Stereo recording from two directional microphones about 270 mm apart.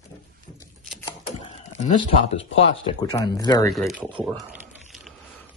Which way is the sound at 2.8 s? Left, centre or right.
Centre.